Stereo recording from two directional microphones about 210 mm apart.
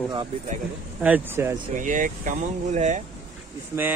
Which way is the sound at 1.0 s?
10° right (ahead or behind).